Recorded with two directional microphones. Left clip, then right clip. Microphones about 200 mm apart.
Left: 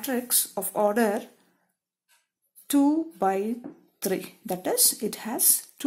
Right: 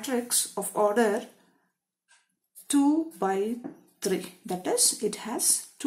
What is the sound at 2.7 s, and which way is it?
Speech, 35° left (ahead or behind).